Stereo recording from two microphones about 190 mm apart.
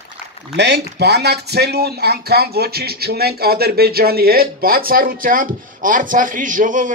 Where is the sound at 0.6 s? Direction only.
60° right (ahead or behind).